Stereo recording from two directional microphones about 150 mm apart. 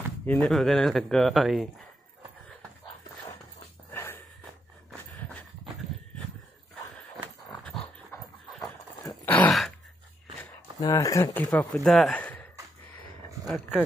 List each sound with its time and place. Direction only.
0.4 s speech: centre (ahead or behind)
3.3 s dog: 20° left (ahead or behind)
7.6 s dog: 5° left (ahead or behind)
9.2 s dog: 10° left (ahead or behind)
10.8 s speech: 25° left (ahead or behind)
11.3 s speech: 5° left (ahead or behind)
13.5 s speech: 5° right (ahead or behind)